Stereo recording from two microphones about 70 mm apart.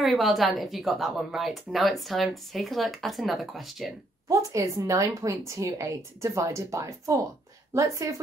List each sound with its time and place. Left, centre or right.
0.0 s speech: centre
4.3 s a woman's voice: right